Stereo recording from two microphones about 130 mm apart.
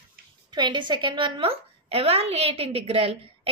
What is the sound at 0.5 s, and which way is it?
A woman's voice, 35° right (ahead or behind).